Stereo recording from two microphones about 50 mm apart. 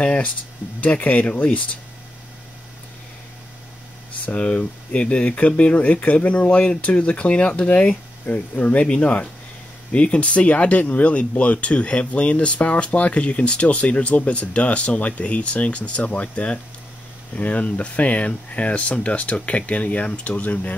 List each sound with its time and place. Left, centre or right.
0.0 s speech: left
4.3 s speech: left